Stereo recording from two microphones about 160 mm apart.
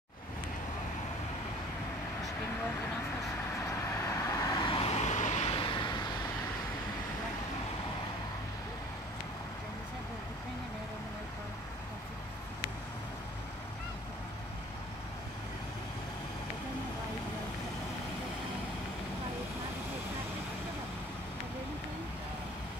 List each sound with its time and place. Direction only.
3.7 s vehicle: 20° left (ahead or behind)
4.7 s vehicle: 40° left (ahead or behind)
5.5 s vehicle: 30° left (ahead or behind)